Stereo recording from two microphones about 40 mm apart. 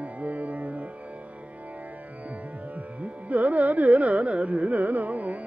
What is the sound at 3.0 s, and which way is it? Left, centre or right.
Carnatic music, right.